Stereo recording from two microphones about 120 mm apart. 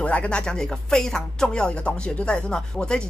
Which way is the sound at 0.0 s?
10° left (ahead or behind).